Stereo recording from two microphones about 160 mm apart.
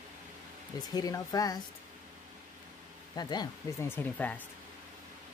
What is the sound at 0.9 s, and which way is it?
Speech, 20° left (ahead or behind).